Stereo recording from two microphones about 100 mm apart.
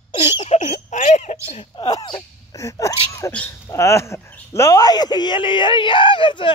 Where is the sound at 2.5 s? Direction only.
30° left (ahead or behind).